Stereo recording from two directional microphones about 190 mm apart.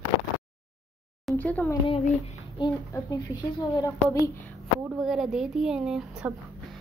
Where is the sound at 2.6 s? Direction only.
25° left (ahead or behind).